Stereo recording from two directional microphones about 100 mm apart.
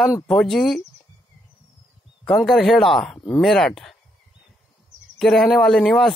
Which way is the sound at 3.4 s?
5° left (ahead or behind).